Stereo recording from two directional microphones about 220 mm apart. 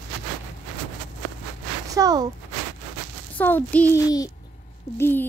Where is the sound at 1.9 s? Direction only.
15° right (ahead or behind).